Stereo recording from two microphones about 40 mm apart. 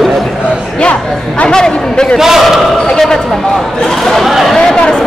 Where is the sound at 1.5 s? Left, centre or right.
Centre.